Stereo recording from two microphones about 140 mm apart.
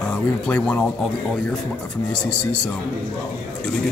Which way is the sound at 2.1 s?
5° left (ahead or behind).